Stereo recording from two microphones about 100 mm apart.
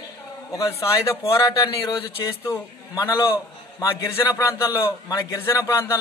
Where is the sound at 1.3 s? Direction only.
35° left (ahead or behind).